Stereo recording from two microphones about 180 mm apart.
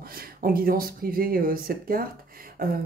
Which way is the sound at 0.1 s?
55° right (ahead or behind).